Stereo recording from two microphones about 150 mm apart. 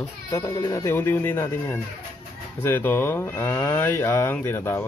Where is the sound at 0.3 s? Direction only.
20° left (ahead or behind).